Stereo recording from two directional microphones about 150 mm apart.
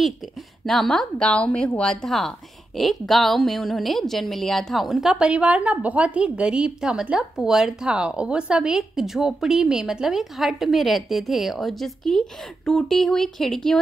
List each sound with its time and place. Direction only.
0.7 s a woman's voice: centre (ahead or behind)